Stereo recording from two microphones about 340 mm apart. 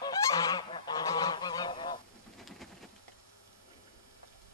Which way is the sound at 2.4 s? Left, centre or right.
Centre.